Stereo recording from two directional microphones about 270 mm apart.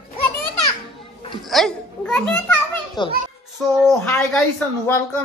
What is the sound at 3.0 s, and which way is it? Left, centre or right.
Speech, centre.